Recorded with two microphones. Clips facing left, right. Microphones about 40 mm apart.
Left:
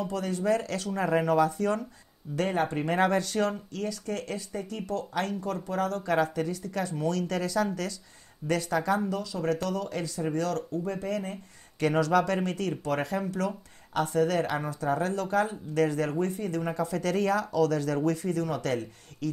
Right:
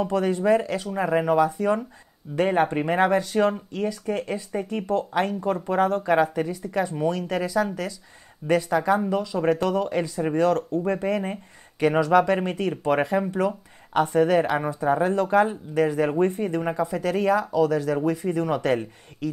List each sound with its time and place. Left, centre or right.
0.0 s speech: right
2.9 s speech: centre
9.1 s speech: right
11.8 s speech: centre
15.7 s speech: centre
16.2 s speech: right